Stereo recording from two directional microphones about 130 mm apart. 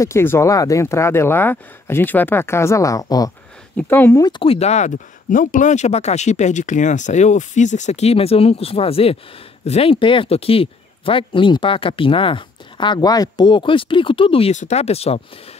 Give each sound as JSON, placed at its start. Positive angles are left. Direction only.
{"t": 0.0, "sound": "speech", "side_deg": 20}
{"t": 3.7, "sound": "speech", "side_deg": 15}
{"t": 4.2, "sound": "speech", "side_deg": 40}
{"t": 14.5, "sound": "speech", "side_deg": 60}